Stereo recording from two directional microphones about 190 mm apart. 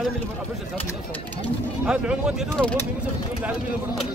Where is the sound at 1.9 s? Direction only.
5° right (ahead or behind).